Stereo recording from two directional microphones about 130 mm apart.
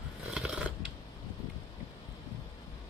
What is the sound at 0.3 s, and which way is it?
Scissors, 5° right (ahead or behind).